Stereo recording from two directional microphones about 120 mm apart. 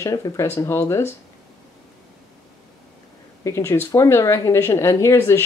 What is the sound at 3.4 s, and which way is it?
Speech, 25° left (ahead or behind).